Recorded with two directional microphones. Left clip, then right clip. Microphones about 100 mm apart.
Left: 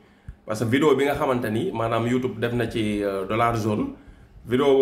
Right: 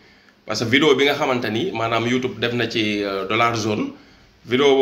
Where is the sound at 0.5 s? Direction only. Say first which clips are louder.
Right 4 dB; 45° left (ahead or behind).